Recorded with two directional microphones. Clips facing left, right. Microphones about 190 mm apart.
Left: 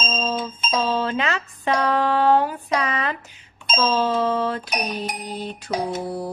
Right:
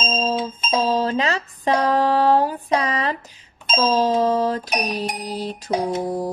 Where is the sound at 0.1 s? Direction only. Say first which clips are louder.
Right 5 dB; 35° right (ahead or behind).